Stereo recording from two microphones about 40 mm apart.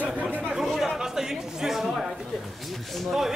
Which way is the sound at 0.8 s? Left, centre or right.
Centre.